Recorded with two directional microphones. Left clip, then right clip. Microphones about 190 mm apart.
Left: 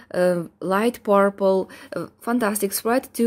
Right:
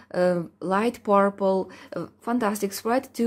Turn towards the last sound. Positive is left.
turn(degrees=15)  # may be behind; listen again after turning